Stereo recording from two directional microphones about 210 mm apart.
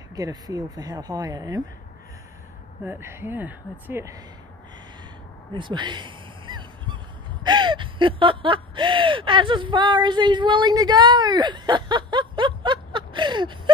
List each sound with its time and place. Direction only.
0.1 s speech: 15° right (ahead or behind)
2.8 s speech: 10° right (ahead or behind)
5.5 s a sound: 20° right (ahead or behind)
7.4 s gasp: 20° right (ahead or behind)